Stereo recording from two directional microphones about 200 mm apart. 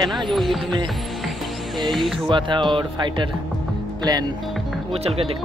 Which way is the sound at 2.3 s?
25° right (ahead or behind).